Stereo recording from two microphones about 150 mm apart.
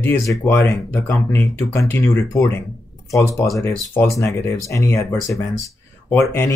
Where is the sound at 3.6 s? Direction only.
15° left (ahead or behind).